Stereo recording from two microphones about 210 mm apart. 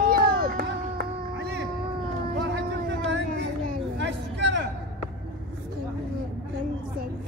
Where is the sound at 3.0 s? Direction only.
60° right (ahead or behind).